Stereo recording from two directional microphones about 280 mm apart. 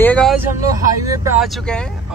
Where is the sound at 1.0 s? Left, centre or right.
Centre.